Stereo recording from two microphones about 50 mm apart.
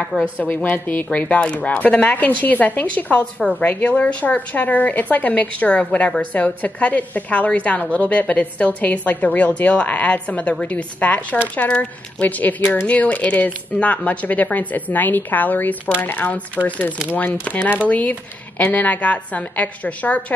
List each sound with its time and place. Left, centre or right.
0.2 s a woman's voice: left
1.4 s a woman's voice: left